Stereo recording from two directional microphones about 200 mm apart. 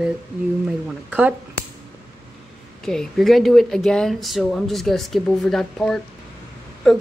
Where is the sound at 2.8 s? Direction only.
Centre (ahead or behind).